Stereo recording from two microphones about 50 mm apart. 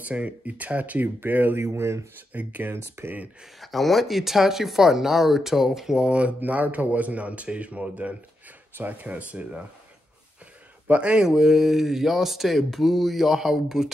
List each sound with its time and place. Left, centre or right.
0.0 s speech: right
1.6 s speech: right
2.3 s speech: right
3.5 s speech: centre
6.0 s speech: right
10.9 s speech: right
11.2 s speech: centre